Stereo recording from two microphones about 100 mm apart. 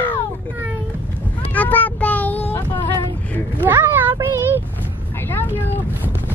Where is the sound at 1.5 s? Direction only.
15° left (ahead or behind).